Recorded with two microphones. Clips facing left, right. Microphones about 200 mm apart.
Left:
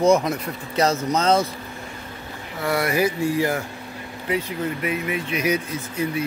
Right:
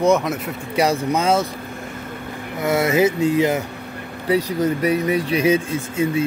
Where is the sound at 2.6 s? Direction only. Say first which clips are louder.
Right 4 dB; 20° right (ahead or behind).